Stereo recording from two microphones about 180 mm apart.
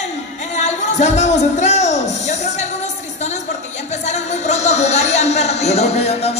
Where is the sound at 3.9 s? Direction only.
40° left (ahead or behind).